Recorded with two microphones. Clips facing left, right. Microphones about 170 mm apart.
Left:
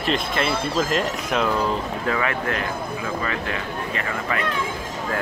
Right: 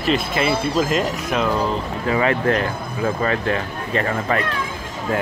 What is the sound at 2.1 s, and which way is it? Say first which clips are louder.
Speech: right 9 dB; 25° right (ahead or behind).